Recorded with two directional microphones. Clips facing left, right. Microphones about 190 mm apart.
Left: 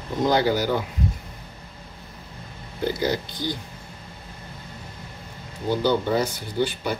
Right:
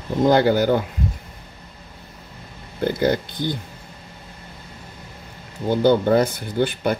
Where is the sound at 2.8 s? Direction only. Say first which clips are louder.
Right 4 dB; 55° right (ahead or behind).